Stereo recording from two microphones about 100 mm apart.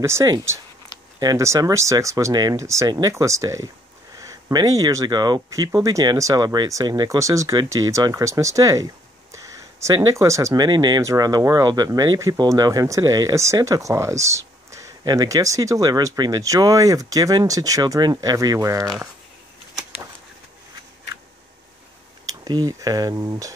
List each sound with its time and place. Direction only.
0.0 s speech: 25° right (ahead or behind)
22.2 s speech: 40° right (ahead or behind)